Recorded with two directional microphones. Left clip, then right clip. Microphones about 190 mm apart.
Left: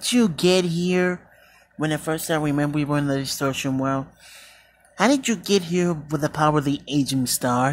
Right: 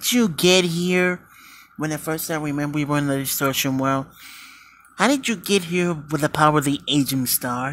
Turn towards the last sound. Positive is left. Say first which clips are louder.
# left 3 dB
turn(degrees=10)  # may be behind; listen again after turning